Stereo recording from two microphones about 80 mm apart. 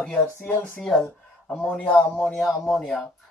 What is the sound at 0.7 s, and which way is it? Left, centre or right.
Speech, centre.